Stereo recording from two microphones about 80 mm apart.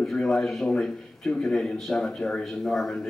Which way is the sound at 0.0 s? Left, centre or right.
Centre.